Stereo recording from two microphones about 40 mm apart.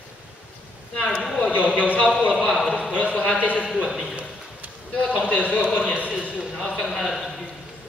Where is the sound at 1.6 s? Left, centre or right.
Left.